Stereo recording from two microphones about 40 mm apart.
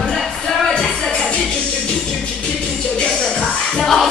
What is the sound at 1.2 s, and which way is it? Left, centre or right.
Music, left.